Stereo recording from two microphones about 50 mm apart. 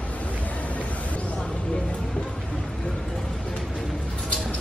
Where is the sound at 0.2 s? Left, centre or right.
Left.